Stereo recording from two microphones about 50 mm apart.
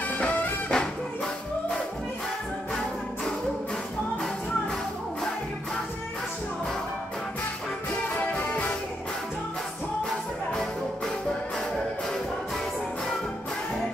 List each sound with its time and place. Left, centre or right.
0.1 s music: left
0.7 s music: centre
8.2 s music: left
10.0 s music: centre